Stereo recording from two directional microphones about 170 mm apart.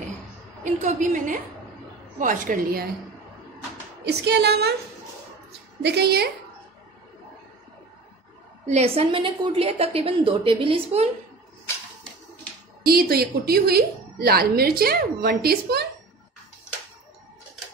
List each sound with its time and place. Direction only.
0.7 s a woman's voice: 45° right (ahead or behind)
4.0 s speech: 75° right (ahead or behind)
5.8 s speech: 75° right (ahead or behind)
8.6 s a woman's voice: 40° right (ahead or behind)
12.8 s a woman's voice: 65° right (ahead or behind)